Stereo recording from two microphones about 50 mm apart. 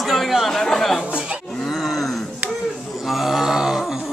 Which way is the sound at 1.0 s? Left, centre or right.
Right.